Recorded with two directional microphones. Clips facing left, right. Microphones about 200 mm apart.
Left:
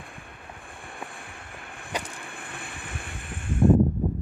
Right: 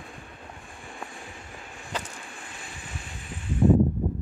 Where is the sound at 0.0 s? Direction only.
55° left (ahead or behind).